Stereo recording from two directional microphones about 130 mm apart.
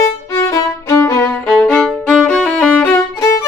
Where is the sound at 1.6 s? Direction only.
5° left (ahead or behind).